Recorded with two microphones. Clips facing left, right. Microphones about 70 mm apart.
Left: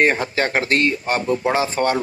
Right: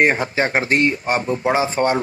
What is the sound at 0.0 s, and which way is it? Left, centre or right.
Speech, centre.